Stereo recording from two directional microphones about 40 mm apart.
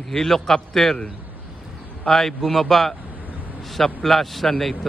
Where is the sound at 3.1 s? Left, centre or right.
Right.